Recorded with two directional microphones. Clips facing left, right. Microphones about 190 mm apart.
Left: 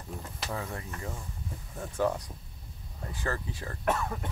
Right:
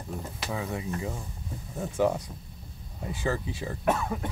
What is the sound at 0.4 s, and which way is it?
Speech, 5° right (ahead or behind).